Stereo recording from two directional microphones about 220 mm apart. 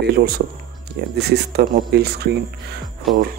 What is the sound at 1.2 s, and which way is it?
Speech, 45° right (ahead or behind).